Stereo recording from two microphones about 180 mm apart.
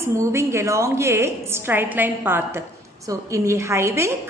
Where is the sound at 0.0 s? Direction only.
15° right (ahead or behind).